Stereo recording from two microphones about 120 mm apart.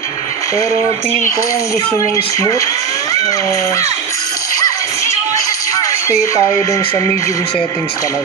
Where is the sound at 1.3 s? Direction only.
30° left (ahead or behind).